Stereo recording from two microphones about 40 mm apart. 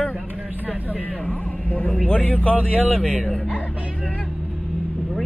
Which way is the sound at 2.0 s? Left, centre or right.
Left.